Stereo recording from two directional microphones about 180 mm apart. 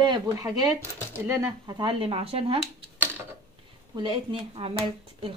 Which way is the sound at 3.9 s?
30° right (ahead or behind).